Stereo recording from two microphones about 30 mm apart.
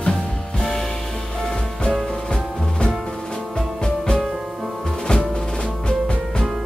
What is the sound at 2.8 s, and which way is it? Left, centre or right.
Music, left.